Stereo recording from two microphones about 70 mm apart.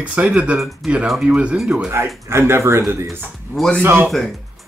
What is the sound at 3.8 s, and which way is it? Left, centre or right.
Speech, right.